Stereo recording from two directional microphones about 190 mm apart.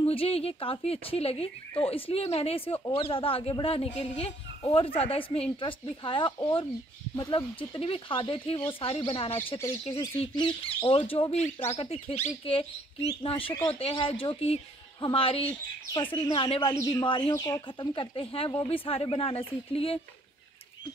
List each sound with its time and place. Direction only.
0.0 s speech: 30° left (ahead or behind)